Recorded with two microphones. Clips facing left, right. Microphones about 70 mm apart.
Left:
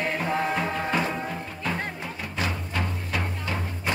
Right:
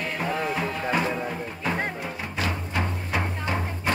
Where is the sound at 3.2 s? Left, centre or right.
Right.